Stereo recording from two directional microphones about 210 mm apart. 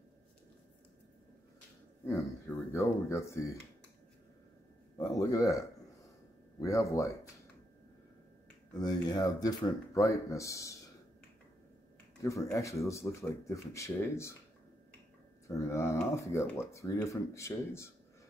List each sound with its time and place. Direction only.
2.0 s speech: 15° left (ahead or behind)
4.9 s speech: 15° left (ahead or behind)
8.7 s speech: 20° left (ahead or behind)
12.2 s speech: 15° left (ahead or behind)
15.4 s speech: 15° left (ahead or behind)